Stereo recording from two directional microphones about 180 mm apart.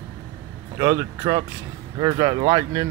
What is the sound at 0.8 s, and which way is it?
Speech, 20° right (ahead or behind).